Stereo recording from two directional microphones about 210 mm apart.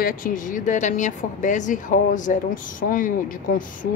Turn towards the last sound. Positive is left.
turn(degrees=40)  # may be behind; listen again after turning